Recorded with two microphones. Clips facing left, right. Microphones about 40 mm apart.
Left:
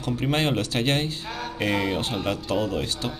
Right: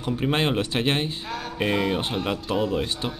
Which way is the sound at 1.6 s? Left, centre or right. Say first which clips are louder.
Right 1 dB; centre.